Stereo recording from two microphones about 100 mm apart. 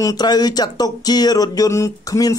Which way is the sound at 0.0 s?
40° left (ahead or behind).